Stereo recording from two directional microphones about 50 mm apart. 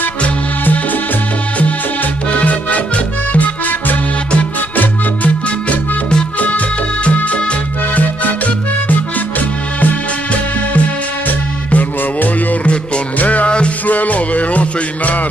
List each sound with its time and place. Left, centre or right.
2.3 s music: left
7.1 s music: left
9.8 s music: left